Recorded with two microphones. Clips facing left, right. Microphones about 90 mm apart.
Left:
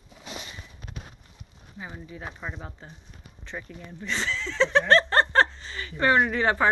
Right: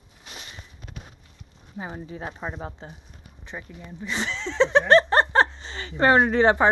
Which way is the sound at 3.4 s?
10° right (ahead or behind).